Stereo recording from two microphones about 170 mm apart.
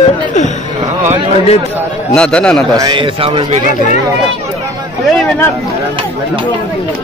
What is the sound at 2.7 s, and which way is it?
Speech, 25° right (ahead or behind).